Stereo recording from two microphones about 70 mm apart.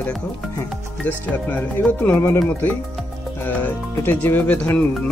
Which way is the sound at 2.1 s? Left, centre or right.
Left.